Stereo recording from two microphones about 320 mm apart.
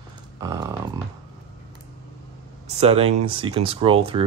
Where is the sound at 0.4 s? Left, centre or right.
Centre.